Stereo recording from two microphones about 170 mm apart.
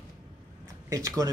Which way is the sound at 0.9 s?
20° right (ahead or behind).